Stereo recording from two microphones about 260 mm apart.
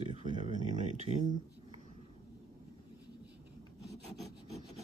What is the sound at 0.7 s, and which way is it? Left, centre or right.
Speech, right.